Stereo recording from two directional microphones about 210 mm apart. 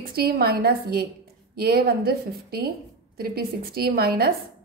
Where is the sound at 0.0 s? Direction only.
45° right (ahead or behind).